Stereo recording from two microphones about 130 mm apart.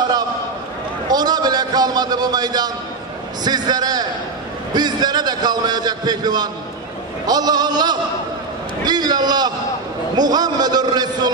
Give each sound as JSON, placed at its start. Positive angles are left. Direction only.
{"t": 1.0, "sound": "a man's voice", "side_deg": -30}